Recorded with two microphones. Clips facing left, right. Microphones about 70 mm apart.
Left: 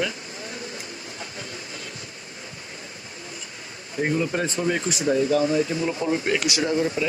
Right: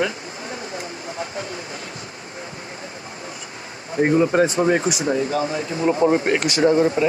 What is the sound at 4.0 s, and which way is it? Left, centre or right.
A man's voice, right.